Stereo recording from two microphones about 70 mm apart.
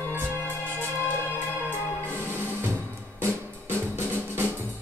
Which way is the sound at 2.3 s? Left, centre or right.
Right.